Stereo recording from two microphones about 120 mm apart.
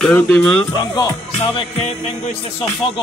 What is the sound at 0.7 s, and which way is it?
Music, 35° left (ahead or behind).